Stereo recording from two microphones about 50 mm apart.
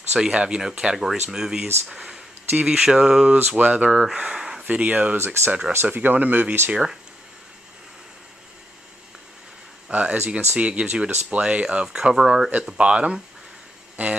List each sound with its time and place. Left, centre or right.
0.1 s speech: right
3.3 s speech: right; by 4.6 s centre
4.6 s speech: right
5.1 s speech: right
5.9 s speech: right
6.7 s speech: centre
9.8 s speech: right
12.1 s speech: centre
12.6 s speech: right